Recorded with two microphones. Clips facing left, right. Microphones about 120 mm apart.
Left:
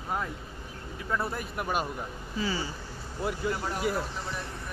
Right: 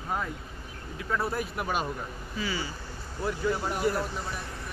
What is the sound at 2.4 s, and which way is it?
Speech, 30° left (ahead or behind).